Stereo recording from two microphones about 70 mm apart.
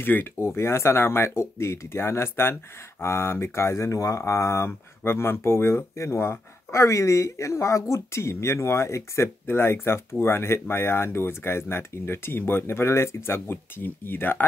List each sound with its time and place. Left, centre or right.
0.0 s speech: left